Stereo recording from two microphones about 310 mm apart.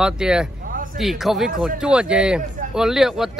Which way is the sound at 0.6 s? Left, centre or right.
Right.